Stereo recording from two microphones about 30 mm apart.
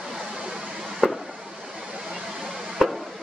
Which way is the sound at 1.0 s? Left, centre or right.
Centre.